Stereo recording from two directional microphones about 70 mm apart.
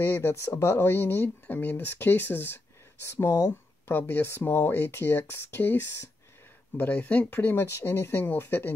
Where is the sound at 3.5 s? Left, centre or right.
Left.